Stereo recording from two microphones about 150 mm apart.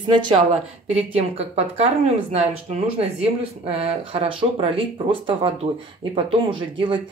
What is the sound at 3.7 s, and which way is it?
Speech, 40° right (ahead or behind).